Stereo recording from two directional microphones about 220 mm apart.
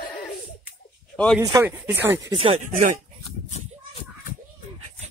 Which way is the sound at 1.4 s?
15° right (ahead or behind).